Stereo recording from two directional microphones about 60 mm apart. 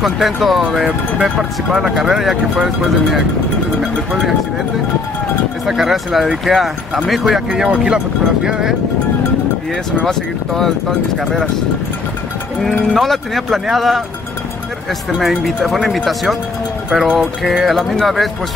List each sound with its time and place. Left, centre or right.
0.0 s speech: centre
5.7 s speech: centre
12.9 s speech: centre
15.1 s speech: centre